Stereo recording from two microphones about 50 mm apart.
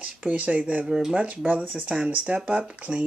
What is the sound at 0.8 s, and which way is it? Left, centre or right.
Speech, centre.